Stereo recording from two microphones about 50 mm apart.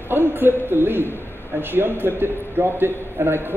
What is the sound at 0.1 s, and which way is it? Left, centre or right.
A man's voice, right.